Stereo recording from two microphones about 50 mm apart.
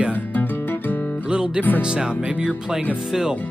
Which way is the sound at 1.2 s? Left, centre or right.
Centre.